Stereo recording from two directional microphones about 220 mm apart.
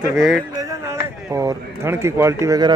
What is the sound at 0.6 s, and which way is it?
A man's voice, 15° right (ahead or behind).